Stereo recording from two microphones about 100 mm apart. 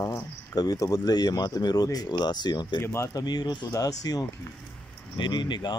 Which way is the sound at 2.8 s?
25° left (ahead or behind).